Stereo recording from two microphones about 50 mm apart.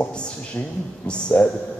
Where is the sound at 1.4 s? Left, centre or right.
Left.